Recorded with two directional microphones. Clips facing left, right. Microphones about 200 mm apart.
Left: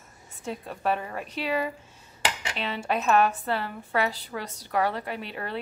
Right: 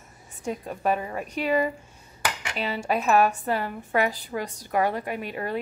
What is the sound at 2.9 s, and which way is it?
A woman's voice, 10° right (ahead or behind).